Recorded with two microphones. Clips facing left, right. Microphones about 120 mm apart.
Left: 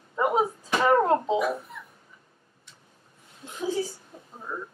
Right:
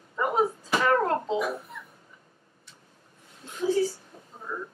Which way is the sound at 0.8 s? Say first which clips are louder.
Left 4 dB; 20° left (ahead or behind).